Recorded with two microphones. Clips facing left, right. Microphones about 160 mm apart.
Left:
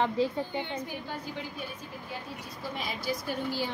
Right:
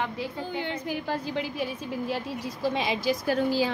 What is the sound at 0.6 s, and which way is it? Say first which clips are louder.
A woman's voice: right 4 dB; 90° right.